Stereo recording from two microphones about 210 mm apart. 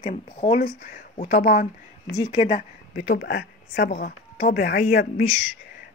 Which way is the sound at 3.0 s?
55° left (ahead or behind).